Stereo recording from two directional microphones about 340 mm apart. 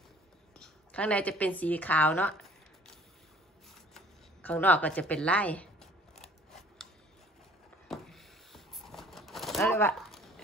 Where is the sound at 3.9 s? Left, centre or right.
Centre.